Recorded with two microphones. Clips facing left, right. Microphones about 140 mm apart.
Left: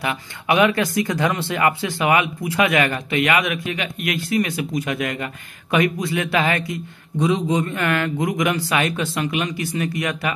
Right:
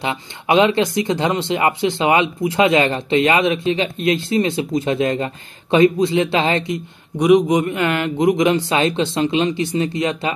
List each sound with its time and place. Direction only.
0.0 s speech: 25° right (ahead or behind)